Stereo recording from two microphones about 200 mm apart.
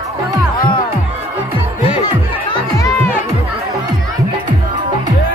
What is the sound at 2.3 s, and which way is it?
Music, 20° left (ahead or behind).